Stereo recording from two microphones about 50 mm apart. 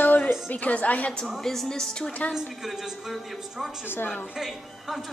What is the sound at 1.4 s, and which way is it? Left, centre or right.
Speech, centre.